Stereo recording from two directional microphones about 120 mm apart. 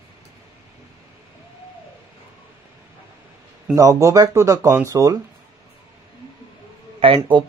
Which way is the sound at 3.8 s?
30° right (ahead or behind).